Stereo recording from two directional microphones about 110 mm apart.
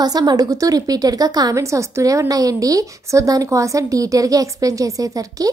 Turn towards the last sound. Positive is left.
turn(degrees=-30)  # may be behind; listen again after turning